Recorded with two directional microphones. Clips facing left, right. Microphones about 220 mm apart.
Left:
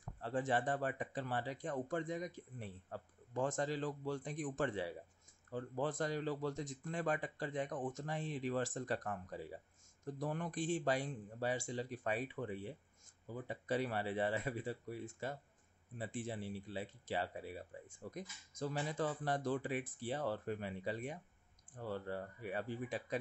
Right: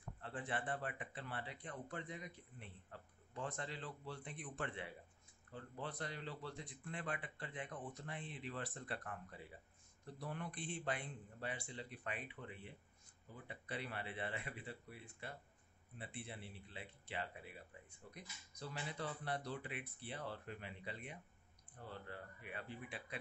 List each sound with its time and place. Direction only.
0.2 s speech: 40° left (ahead or behind)
21.7 s a sound: 45° left (ahead or behind)
22.0 s speech: 40° left (ahead or behind)